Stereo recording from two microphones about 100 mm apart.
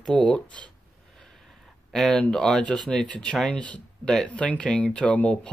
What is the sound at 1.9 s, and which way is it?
Speech, 5° left (ahead or behind).